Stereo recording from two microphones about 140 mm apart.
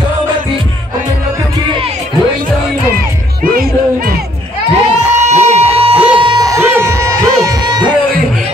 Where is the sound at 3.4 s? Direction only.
90° right.